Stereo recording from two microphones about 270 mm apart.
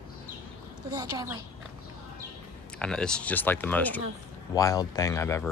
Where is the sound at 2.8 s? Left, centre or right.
Centre.